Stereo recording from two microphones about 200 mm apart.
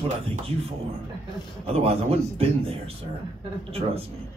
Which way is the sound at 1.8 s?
30° right (ahead or behind).